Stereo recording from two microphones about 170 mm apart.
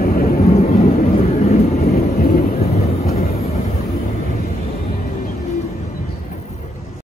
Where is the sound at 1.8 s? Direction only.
60° left (ahead or behind).